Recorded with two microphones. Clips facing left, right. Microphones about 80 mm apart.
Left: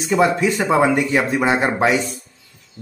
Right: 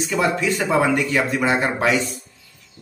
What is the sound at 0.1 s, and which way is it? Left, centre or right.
Speech, left.